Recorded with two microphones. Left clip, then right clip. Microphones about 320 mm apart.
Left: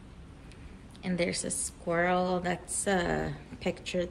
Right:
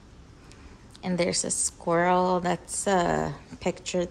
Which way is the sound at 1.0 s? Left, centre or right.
Centre.